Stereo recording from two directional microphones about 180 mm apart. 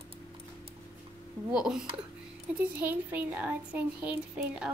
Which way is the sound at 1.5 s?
5° right (ahead or behind).